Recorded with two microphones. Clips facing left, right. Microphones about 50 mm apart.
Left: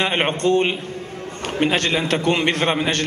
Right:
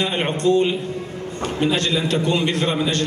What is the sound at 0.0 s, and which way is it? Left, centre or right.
A man's voice, left.